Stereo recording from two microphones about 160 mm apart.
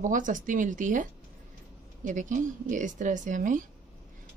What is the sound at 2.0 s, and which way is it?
A woman's voice, 55° right (ahead or behind).